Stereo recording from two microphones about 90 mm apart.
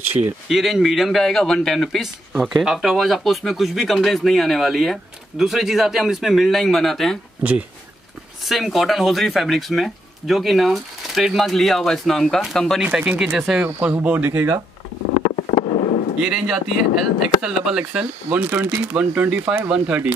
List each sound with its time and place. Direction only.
0.5 s speech: 5° right (ahead or behind)
8.5 s speech: centre (ahead or behind)
12.8 s speech: 15° right (ahead or behind)
15.3 s a sound: 90° left
16.2 s speech: 5° right (ahead or behind)